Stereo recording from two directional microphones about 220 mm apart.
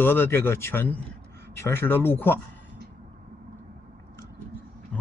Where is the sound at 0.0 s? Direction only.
10° left (ahead or behind).